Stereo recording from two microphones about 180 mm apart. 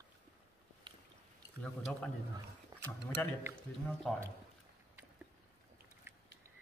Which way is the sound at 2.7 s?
20° right (ahead or behind).